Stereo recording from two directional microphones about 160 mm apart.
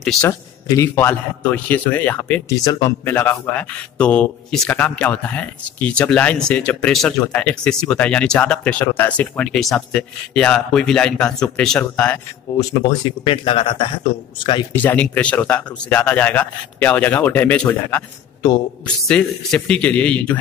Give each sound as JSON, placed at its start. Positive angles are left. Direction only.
{"t": 0.2, "sound": "speech", "side_deg": 20}
{"t": 2.5, "sound": "speech", "side_deg": 20}
{"t": 3.2, "sound": "speech", "side_deg": 10}
{"t": 12.5, "sound": "speech", "side_deg": 20}
{"t": 13.2, "sound": "a man's voice", "side_deg": 35}
{"t": 14.7, "sound": "speech", "side_deg": 10}
{"t": 19.0, "sound": "speech", "side_deg": 5}